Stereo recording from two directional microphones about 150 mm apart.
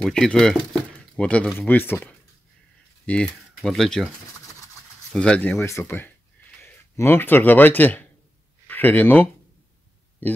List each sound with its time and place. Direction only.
0.0 s speech: 5° left (ahead or behind)
5.1 s speech: 5° left (ahead or behind)
5.6 s speech: 20° left (ahead or behind)